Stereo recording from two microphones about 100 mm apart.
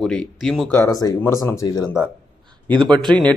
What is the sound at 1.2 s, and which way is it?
Speech, 30° left (ahead or behind).